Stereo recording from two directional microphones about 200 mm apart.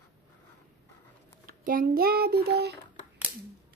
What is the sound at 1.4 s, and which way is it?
A child's voice, 45° right (ahead or behind).